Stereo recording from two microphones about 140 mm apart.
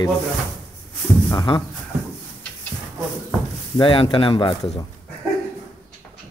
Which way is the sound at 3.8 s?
40° left (ahead or behind).